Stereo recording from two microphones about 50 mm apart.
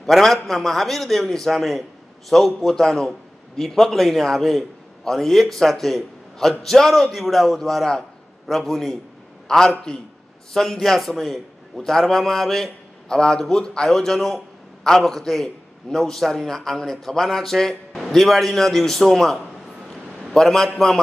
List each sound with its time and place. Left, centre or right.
0.0 s a man's voice: centre